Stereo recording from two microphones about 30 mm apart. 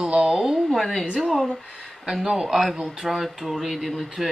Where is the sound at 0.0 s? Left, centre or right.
Right.